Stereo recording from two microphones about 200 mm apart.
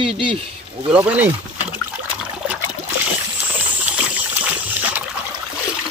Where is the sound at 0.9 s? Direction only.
5° right (ahead or behind).